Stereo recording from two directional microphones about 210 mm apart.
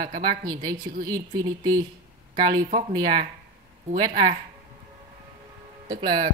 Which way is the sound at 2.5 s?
25° right (ahead or behind).